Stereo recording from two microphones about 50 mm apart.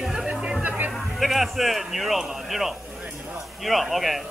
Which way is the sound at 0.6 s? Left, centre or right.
Right.